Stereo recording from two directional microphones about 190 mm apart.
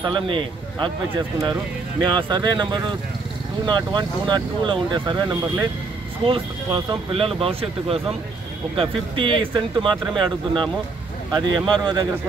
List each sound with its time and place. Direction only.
0.0 s speech: 25° right (ahead or behind)
2.0 s speech: 25° right (ahead or behind)